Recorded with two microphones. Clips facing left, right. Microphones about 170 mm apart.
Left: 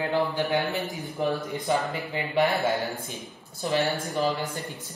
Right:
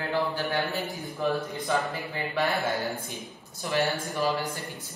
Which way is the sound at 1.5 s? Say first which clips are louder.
Left 2 dB; 20° left (ahead or behind).